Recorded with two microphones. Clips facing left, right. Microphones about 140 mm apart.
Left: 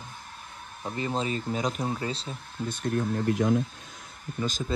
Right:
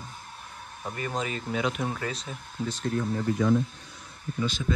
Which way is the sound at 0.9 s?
25° left (ahead or behind).